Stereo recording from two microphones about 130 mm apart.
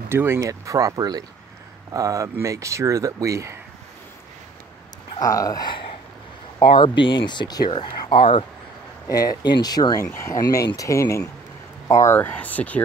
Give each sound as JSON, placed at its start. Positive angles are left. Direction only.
{"t": 0.1, "sound": "speech", "side_deg": -20}
{"t": 5.2, "sound": "speech", "side_deg": 25}
{"t": 9.1, "sound": "speech", "side_deg": 30}